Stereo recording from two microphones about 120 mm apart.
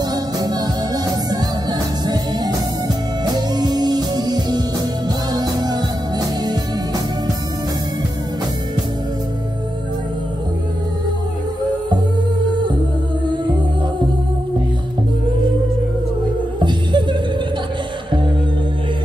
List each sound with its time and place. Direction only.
0.0 s music: 35° right (ahead or behind)
16.5 s music: 40° right (ahead or behind)